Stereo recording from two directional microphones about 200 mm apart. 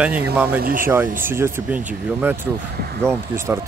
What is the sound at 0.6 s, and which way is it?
Speech, 45° right (ahead or behind).